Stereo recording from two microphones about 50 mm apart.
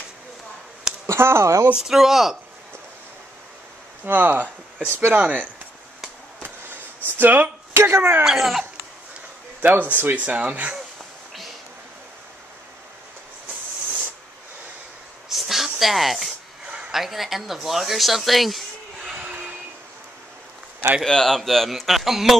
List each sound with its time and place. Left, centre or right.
1.0 s speech: right
1.8 s speech: centre
4.0 s speech: right
6.4 s a sound: right
7.7 s speech: right
8.2 s speech: centre
9.6 s speech: right
15.2 s a sound: centre
16.9 s speech: centre
21.0 s speech: centre